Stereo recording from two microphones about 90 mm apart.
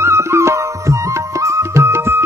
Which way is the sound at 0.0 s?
30° right (ahead or behind).